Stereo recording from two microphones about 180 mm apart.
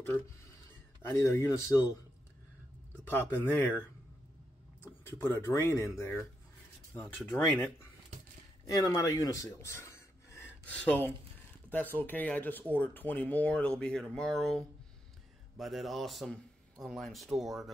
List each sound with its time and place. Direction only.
1.0 s speech: 15° left (ahead or behind)
3.1 s speech: 10° left (ahead or behind)
4.8 s speech: 10° left (ahead or behind)
12.0 s a man's voice: 10° left (ahead or behind)